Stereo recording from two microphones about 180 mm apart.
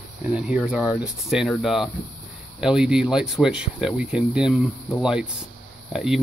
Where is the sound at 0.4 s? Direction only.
5° right (ahead or behind).